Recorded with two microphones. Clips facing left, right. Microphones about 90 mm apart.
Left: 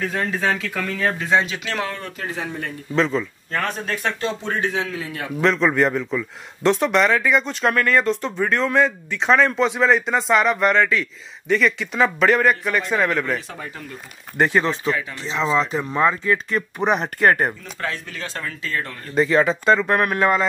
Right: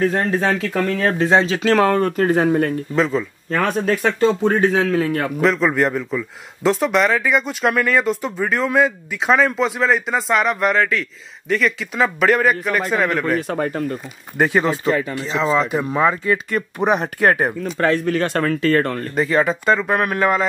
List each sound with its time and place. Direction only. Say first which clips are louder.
0.0 s speech: right 5 dB; 40° right (ahead or behind)
2.9 s speech: right 2 dB; 5° right (ahead or behind)
4.6 s a man's voice: right 8 dB; 45° right (ahead or behind)
5.4 s speech: even; 5° right (ahead or behind)
13.5 s a man's voice: right 13 dB; 55° right (ahead or behind)
14.4 s speech: right 2 dB; 5° right (ahead or behind)
17.7 s speech: right 11 dB; 55° right (ahead or behind)
19.1 s speech: left 1 dB; centre (ahead or behind)